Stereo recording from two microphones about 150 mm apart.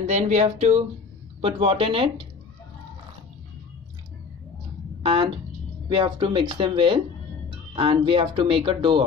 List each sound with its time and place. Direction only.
0.0 s speech: 50° right (ahead or behind)
5.0 s speech: 35° right (ahead or behind)